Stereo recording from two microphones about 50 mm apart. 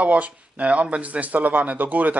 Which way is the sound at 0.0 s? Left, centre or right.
Right.